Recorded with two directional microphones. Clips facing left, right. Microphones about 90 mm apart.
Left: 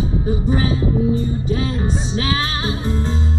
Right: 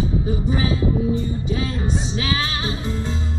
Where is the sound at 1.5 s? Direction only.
35° left (ahead or behind).